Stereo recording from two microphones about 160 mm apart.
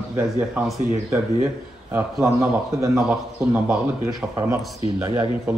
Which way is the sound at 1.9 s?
15° right (ahead or behind).